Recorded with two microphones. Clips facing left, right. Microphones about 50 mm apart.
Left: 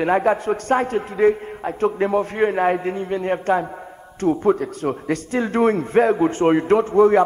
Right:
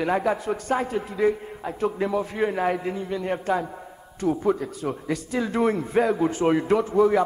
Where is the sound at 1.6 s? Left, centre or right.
Left.